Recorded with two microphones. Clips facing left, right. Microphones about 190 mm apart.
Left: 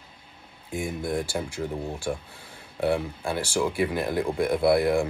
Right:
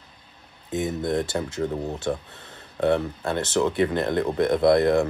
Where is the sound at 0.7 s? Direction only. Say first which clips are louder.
Right 4 dB; 20° right (ahead or behind).